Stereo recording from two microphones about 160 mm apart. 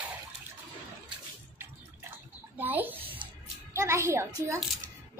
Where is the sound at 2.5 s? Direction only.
10° right (ahead or behind).